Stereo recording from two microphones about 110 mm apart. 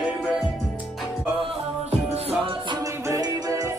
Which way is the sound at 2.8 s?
30° right (ahead or behind).